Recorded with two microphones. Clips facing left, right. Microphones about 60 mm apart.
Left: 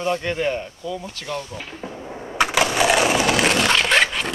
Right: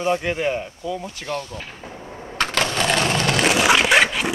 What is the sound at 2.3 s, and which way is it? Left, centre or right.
Crushing, centre.